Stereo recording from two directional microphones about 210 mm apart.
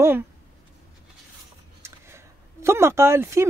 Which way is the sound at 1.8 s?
10° right (ahead or behind).